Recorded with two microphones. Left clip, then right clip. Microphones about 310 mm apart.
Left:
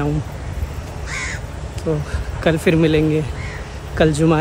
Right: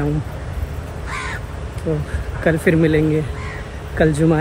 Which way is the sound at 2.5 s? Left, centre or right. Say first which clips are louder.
Even; centre.